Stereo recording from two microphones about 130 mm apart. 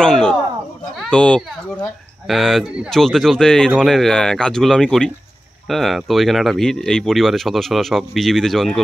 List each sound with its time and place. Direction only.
0.0 s speech: 5° left (ahead or behind)